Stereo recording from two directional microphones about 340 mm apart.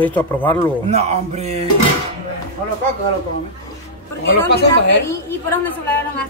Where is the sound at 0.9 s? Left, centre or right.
Centre.